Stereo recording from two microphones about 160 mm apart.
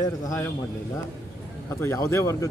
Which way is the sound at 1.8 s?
15° left (ahead or behind).